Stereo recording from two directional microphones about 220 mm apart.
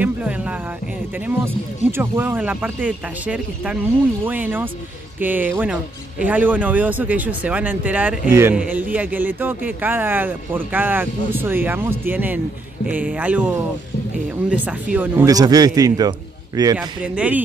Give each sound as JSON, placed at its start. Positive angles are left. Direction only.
{"t": 0.0, "sound": "a sound", "side_deg": -5}
{"t": 1.9, "sound": "speech", "side_deg": -10}
{"t": 14.5, "sound": "speech", "side_deg": -5}
{"t": 16.7, "sound": "speech", "side_deg": -5}